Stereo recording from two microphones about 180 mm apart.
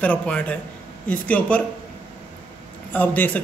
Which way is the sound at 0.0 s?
10° left (ahead or behind).